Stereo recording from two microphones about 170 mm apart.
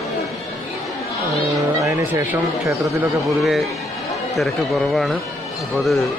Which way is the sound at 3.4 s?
Centre (ahead or behind).